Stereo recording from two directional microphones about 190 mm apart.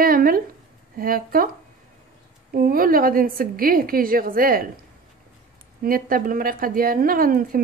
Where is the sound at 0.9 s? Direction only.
50° right (ahead or behind).